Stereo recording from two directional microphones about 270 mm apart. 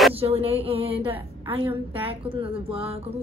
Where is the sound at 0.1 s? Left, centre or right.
Right.